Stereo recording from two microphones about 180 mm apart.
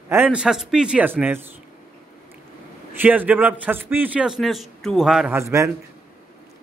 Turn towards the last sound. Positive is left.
turn(degrees=-15)  # may be behind; listen again after turning